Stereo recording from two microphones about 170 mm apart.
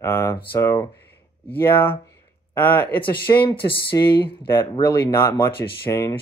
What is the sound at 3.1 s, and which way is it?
Speech, 30° left (ahead or behind).